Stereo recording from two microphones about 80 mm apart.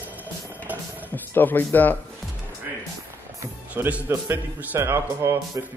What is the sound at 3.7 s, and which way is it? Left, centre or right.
A man's voice, right.